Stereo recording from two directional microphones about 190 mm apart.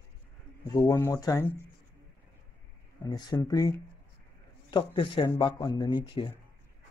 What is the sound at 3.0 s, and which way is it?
Speech, 20° left (ahead or behind).